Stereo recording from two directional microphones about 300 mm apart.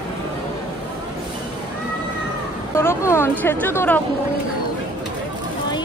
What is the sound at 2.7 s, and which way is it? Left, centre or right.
A woman's voice, centre.